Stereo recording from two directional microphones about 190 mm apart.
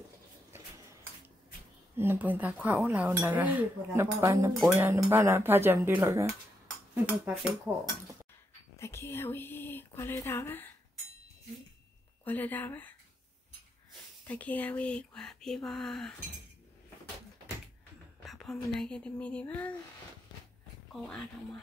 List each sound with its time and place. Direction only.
2.0 s speech: 10° right (ahead or behind)
8.7 s speech: 15° left (ahead or behind)
12.3 s speech: 10° left (ahead or behind)
14.2 s speech: 10° left (ahead or behind)
18.2 s speech: centre (ahead or behind)